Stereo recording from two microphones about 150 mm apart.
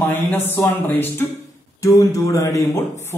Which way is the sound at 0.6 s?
15° left (ahead or behind).